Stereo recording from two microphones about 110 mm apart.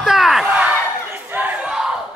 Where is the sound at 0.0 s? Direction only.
5° right (ahead or behind).